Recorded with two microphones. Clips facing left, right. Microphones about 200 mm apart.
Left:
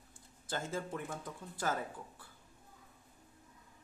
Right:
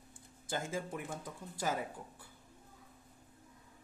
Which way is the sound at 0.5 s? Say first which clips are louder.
Even; 10° right (ahead or behind).